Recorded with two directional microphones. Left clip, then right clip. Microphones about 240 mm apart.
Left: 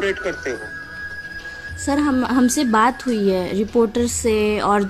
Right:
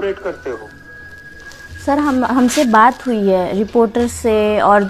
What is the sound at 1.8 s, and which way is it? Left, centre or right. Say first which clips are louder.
A woman's voice: right 5 dB; centre.